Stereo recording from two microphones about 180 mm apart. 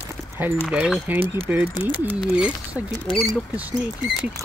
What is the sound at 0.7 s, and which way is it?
Speech, 5° right (ahead or behind).